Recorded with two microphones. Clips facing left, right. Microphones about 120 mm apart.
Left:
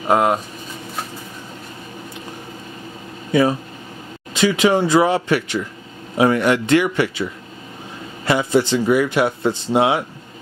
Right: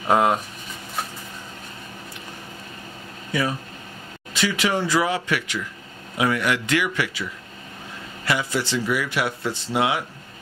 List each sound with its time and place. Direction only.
0.1 s speech: 5° left (ahead or behind)
4.3 s a man's voice: 25° left (ahead or behind)
8.3 s speech: 25° left (ahead or behind)